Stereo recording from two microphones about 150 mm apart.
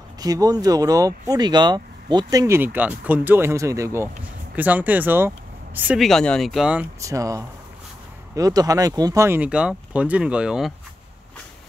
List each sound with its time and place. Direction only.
0.2 s speech: 25° right (ahead or behind)
5.9 s speech: centre (ahead or behind)
7.0 s speech: 20° right (ahead or behind); by 10.7 s 5° right (ahead or behind)